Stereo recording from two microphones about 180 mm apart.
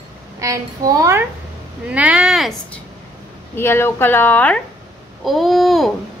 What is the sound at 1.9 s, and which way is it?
Speech, 5° right (ahead or behind).